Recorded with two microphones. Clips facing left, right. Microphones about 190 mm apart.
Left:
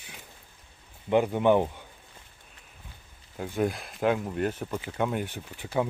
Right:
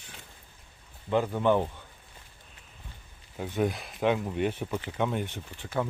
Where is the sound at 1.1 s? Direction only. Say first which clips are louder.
Left 3 dB; 15° left (ahead or behind).